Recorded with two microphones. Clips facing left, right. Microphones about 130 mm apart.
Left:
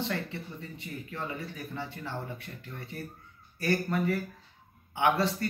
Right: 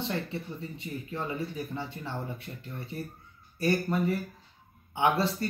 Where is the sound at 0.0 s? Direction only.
25° right (ahead or behind).